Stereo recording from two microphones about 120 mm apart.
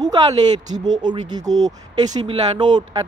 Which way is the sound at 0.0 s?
35° right (ahead or behind).